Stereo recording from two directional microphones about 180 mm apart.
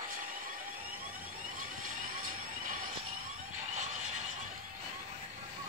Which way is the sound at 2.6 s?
50° right (ahead or behind).